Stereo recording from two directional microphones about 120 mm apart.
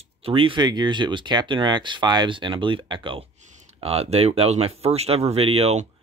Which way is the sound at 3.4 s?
60° right (ahead or behind).